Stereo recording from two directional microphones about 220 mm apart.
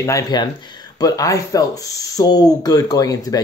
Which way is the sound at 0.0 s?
15° left (ahead or behind).